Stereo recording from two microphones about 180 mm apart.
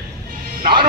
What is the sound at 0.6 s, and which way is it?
Speech, 25° right (ahead or behind).